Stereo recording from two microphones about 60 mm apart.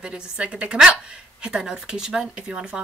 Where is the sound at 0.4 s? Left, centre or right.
Centre.